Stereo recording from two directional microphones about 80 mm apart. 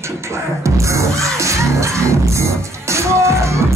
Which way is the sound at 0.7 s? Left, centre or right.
Right.